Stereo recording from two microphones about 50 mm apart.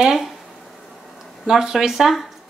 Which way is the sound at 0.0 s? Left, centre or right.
Centre.